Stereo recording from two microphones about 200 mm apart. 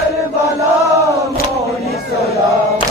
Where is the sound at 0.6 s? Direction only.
15° right (ahead or behind).